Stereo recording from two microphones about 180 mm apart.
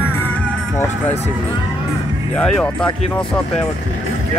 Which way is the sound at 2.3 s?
5° left (ahead or behind).